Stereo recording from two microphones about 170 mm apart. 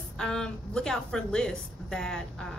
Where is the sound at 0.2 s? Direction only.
5° left (ahead or behind).